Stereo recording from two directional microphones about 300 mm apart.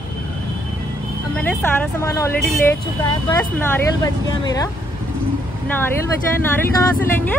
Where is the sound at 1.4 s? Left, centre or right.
Centre.